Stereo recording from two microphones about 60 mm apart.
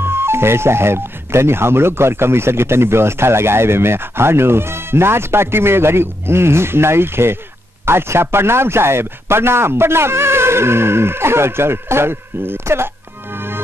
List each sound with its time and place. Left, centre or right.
0.0 s speech: right